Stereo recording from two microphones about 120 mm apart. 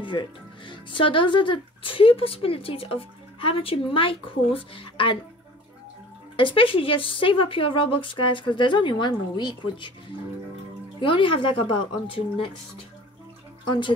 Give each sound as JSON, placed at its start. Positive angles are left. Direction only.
{"t": 0.0, "sound": "speech", "side_deg": 40}
{"t": 6.3, "sound": "speech", "side_deg": 45}
{"t": 11.0, "sound": "speech", "side_deg": 45}
{"t": 13.7, "sound": "speech", "side_deg": 45}